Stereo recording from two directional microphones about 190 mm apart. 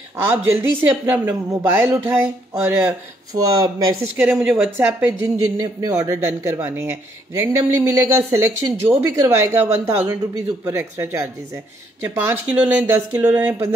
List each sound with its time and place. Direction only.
0.6 s speech: 10° right (ahead or behind)